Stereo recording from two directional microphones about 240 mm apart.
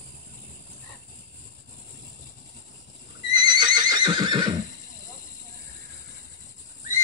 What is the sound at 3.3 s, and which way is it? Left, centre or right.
Neigh, centre.